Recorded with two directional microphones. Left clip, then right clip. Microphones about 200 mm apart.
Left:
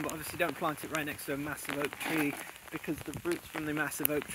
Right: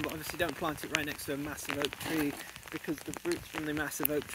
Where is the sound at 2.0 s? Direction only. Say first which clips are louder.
Left 1 dB; 35° left (ahead or behind).